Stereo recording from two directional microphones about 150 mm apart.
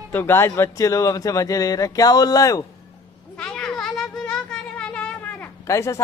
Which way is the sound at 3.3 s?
5° left (ahead or behind).